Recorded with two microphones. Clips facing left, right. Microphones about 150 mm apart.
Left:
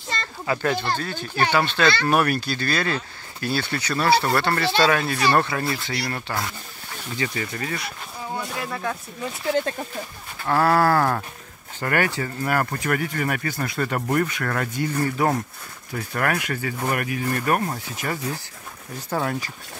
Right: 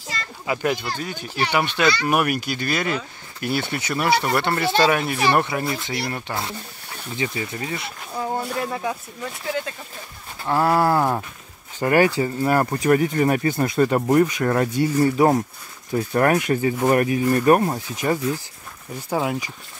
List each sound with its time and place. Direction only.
0.5 s speech: 15° right (ahead or behind)
9.5 s speech: 40° left (ahead or behind)
10.4 s speech: 15° right (ahead or behind)